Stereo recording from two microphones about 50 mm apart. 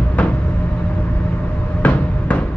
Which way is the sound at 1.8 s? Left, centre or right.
Left.